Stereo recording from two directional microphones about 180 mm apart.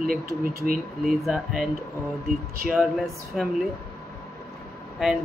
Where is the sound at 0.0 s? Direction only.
50° right (ahead or behind).